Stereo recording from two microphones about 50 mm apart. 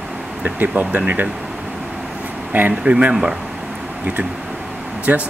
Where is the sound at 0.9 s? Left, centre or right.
Right.